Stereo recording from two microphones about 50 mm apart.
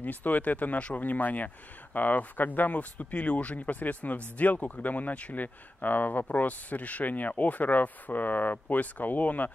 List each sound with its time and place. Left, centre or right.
0.0 s speech: left